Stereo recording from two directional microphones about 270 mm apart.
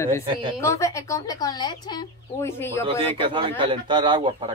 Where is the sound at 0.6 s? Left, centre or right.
Centre.